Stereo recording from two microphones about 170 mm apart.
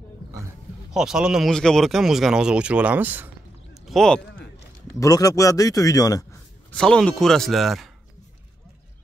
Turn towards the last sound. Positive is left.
turn(degrees=0)  # may be behind; listen again after turning